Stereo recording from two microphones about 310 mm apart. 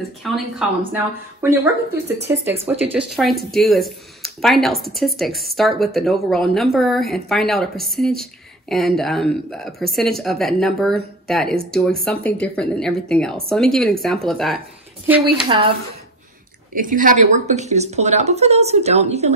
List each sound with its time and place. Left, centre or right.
0.2 s speech: centre
16.7 s speech: right